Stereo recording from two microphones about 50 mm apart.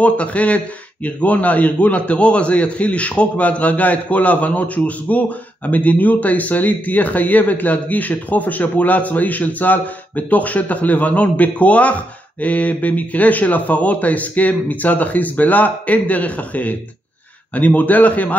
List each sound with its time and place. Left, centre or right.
0.0 s a man's voice: left